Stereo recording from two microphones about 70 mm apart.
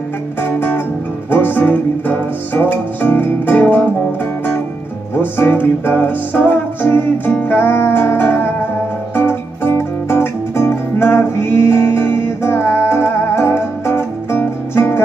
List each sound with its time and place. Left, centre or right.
0.4 s music: left
5.1 s music: left